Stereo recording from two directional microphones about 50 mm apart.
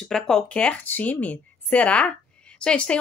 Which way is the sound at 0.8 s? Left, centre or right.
Left.